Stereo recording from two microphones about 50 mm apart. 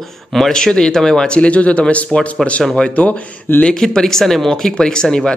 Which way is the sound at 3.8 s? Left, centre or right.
Centre.